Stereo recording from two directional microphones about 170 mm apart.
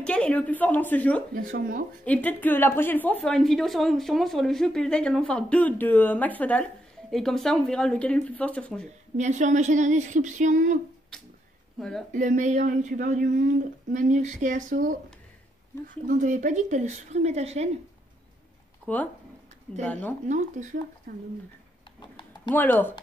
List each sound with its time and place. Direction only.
0.0 s a woman's voice: 5° left (ahead or behind)
1.3 s speech: 50° right (ahead or behind)
2.0 s a woman's voice: 10° left (ahead or behind)
9.1 s speech: 45° right (ahead or behind)
11.1 s cat: 5° left (ahead or behind)
12.1 s speech: 45° right (ahead or behind)
16.1 s speech: 50° right (ahead or behind)
18.8 s a sound: 10° left (ahead or behind)
19.8 s a woman's voice: 10° left (ahead or behind)
20.2 s speech: 45° right (ahead or behind)
21.1 s speech: 55° right (ahead or behind)
22.5 s a woman's voice: 10° left (ahead or behind)